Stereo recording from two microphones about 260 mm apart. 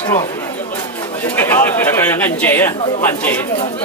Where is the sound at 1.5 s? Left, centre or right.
Centre.